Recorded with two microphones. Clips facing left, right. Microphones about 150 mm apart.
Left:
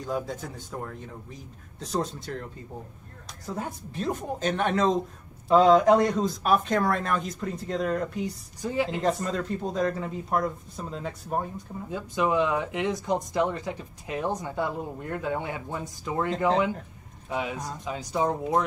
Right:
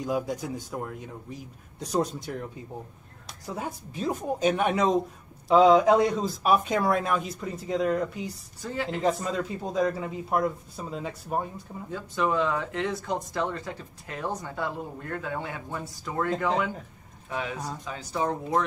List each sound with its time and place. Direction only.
0.0 s speech: 10° right (ahead or behind)
3.4 s speech: 10° right (ahead or behind)
8.6 s speech: 20° left (ahead or behind)
9.0 s speech: 5° right (ahead or behind)
11.9 s speech: 15° left (ahead or behind)
17.3 s speech: 15° left (ahead or behind)